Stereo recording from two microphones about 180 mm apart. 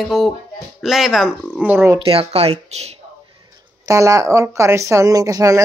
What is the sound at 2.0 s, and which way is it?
Speech, 30° right (ahead or behind).